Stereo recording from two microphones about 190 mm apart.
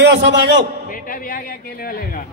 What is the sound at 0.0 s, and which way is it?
Speech, 65° right (ahead or behind).